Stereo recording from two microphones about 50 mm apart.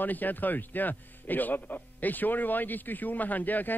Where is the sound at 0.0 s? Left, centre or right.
Left.